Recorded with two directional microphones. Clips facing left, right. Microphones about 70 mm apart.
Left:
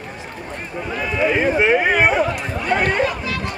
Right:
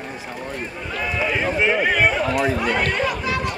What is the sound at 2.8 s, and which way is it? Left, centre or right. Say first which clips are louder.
Chatter: left 3 dB; left.